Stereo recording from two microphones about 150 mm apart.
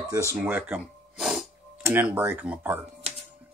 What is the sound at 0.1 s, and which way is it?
Speech, 20° right (ahead or behind).